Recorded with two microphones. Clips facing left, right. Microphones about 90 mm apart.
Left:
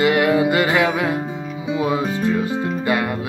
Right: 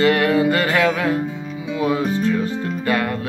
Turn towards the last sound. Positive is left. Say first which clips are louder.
# left 1 dB
turn(degrees=15)  # may be behind; listen again after turning